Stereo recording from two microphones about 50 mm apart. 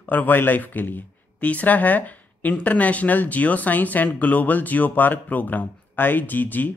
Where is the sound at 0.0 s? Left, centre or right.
Left.